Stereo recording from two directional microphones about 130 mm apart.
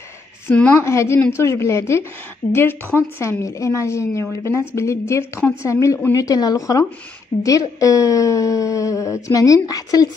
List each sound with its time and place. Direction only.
0.5 s a woman's voice: 15° left (ahead or behind)